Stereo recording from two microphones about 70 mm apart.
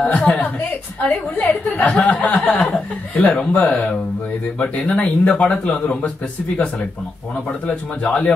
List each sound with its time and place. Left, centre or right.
0.1 s a man's voice: left